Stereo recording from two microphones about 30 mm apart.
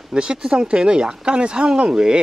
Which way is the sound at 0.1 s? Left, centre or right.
Right.